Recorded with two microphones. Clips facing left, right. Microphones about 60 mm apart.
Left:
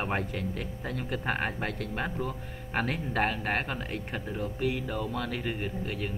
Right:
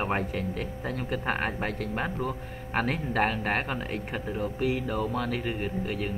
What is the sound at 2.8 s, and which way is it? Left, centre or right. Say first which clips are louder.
A man's voice: right 2 dB; centre.